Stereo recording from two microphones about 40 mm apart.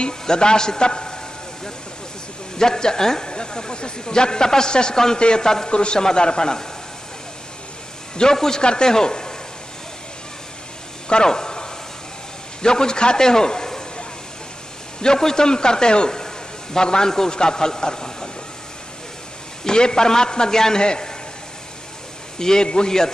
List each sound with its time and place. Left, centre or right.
0.0 s a man's voice: left
2.6 s a man's voice: centre
8.2 s a man's voice: centre
11.1 s a sound: centre
12.6 s a man's voice: centre
15.0 s a man's voice: centre
19.6 s a man's voice: centre
22.4 s a man's voice: centre